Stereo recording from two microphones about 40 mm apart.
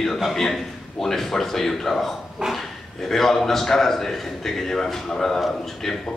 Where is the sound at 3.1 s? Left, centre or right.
Centre.